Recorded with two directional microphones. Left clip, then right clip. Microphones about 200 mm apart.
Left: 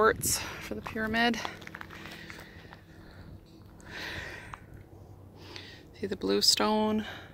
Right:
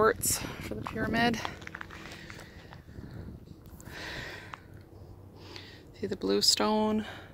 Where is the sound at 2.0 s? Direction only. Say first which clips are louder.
Left 1 dB; centre (ahead or behind).